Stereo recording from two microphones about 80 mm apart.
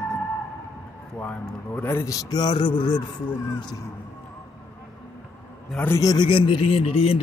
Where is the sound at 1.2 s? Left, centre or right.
Centre.